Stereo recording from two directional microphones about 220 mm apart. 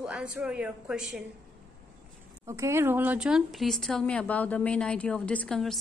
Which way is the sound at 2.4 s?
15° right (ahead or behind).